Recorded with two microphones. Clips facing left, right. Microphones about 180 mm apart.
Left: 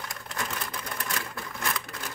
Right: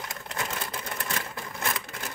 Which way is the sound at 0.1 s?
25° right (ahead or behind).